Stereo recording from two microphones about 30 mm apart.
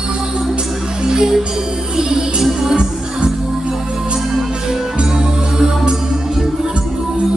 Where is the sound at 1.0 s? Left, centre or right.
Centre.